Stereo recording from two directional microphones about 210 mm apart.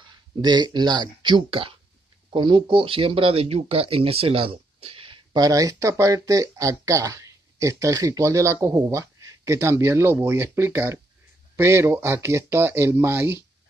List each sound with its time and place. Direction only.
0.4 s speech: 20° right (ahead or behind)